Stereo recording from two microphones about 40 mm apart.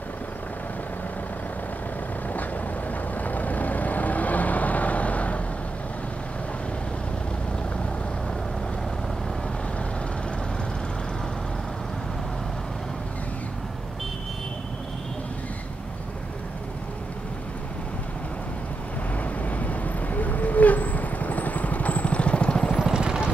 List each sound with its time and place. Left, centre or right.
3.2 s vehicle: left
19.5 s vehicle: left
22.8 s vehicle: centre